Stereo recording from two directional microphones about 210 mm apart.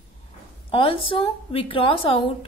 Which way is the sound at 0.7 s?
25° left (ahead or behind).